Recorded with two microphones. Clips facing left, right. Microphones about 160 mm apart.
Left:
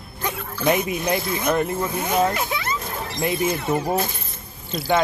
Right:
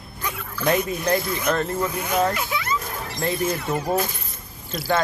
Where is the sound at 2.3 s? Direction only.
40° left (ahead or behind).